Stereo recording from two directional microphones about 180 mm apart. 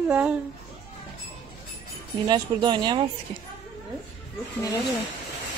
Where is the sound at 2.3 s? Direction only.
25° right (ahead or behind).